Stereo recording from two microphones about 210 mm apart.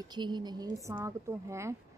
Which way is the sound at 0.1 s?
20° right (ahead or behind).